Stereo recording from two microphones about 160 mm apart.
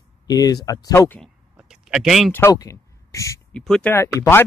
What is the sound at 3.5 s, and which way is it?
Speech, 5° left (ahead or behind).